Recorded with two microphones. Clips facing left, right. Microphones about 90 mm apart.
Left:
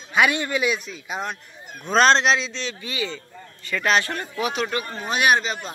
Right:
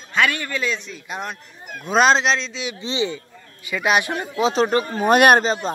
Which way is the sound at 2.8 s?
25° right (ahead or behind).